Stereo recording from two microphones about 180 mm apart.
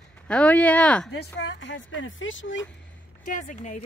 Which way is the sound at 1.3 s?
80° left.